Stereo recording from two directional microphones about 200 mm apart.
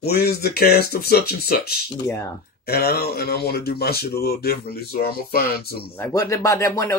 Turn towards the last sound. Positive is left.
turn(degrees=15)  # may be behind; listen again after turning